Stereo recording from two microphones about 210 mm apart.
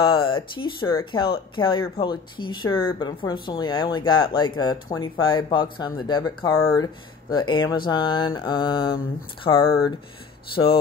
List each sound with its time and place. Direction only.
0.0 s speech: 25° left (ahead or behind)